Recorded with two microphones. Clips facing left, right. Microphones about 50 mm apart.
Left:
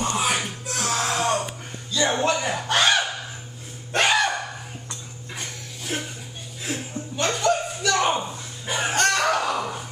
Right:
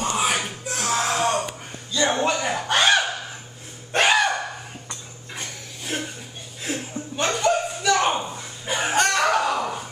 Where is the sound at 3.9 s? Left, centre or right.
Centre.